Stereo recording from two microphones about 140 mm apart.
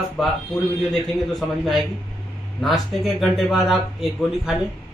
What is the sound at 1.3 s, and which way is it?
Speech, centre (ahead or behind).